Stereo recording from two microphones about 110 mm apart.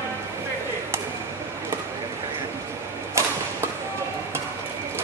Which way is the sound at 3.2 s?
25° right (ahead or behind).